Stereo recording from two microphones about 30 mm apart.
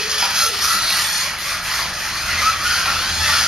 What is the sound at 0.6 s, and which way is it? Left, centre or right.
Music, centre.